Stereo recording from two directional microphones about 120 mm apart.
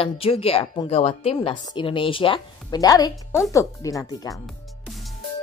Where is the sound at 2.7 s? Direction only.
30° left (ahead or behind).